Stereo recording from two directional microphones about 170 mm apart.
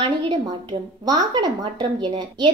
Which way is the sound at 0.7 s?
25° right (ahead or behind).